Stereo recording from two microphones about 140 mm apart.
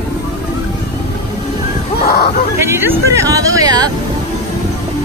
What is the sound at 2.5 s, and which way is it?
Speech, 20° right (ahead or behind).